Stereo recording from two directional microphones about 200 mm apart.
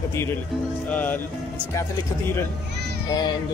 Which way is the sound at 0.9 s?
10° left (ahead or behind).